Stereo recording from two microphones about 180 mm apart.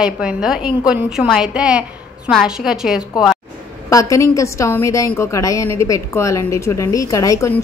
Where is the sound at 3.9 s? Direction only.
20° left (ahead or behind).